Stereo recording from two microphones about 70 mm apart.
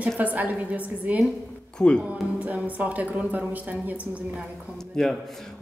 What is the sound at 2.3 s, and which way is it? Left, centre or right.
A woman's voice, right.